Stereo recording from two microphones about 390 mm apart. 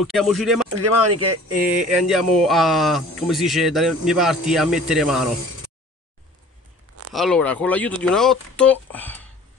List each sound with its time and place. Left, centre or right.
0.0 s speech: centre
0.7 s speech: right
1.8 s speech: centre
7.2 s speech: centre